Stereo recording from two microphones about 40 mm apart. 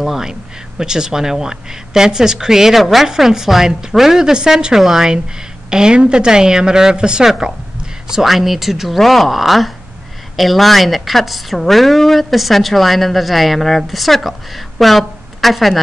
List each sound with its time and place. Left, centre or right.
0.0 s a woman's voice: centre
4.7 s speech: centre
5.7 s a woman's voice: centre